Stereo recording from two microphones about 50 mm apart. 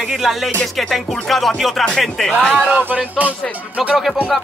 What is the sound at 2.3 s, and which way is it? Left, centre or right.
Speech, left.